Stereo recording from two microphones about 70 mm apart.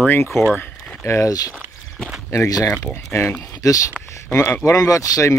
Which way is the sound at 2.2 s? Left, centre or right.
Left.